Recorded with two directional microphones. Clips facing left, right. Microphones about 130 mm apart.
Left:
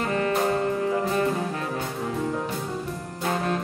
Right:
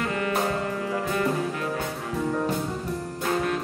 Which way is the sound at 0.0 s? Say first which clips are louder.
Left 2 dB; 30° left (ahead or behind).